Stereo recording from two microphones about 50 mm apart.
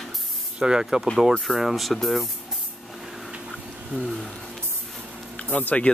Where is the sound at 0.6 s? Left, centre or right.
Centre.